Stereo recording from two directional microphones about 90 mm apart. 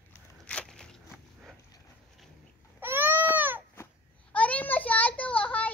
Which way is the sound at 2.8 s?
25° right (ahead or behind).